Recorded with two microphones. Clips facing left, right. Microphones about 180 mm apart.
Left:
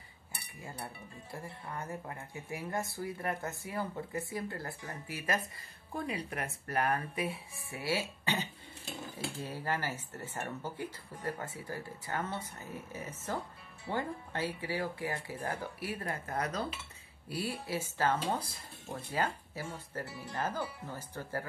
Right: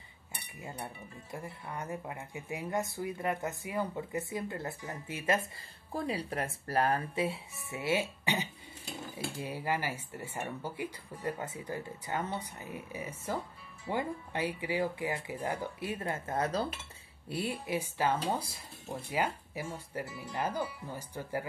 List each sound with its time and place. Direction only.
1.3 s speech: 20° right (ahead or behind)